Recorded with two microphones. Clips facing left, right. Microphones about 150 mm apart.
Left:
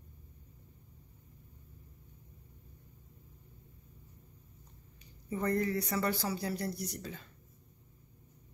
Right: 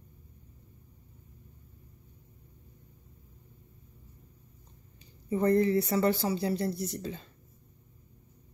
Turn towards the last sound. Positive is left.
turn(degrees=-25)  # may be behind; listen again after turning